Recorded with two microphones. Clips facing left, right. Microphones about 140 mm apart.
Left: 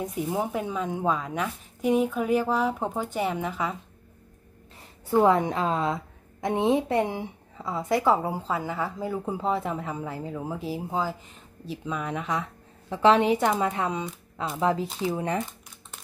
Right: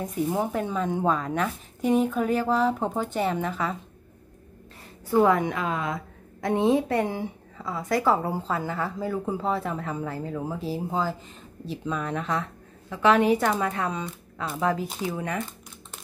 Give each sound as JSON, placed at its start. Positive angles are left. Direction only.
{"t": 0.0, "sound": "a woman's voice", "side_deg": 10}
{"t": 5.2, "sound": "a woman's voice", "side_deg": 30}
{"t": 12.9, "sound": "speech", "side_deg": 30}